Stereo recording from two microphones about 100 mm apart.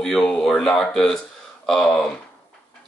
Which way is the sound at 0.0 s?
5° left (ahead or behind).